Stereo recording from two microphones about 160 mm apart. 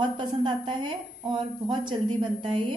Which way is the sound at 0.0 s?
30° right (ahead or behind).